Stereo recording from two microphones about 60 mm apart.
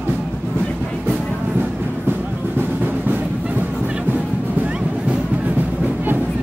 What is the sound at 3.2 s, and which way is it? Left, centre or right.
Music, centre.